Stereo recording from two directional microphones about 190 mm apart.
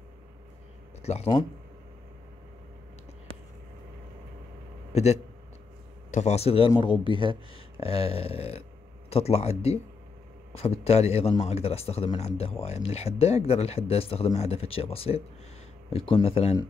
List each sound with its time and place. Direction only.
1.0 s speech: 35° left (ahead or behind)
4.9 s speech: 35° left (ahead or behind)